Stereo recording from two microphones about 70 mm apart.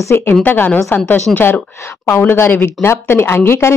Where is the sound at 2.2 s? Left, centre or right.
Left.